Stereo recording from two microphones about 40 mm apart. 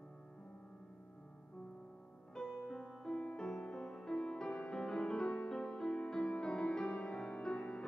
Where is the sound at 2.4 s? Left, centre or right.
Centre.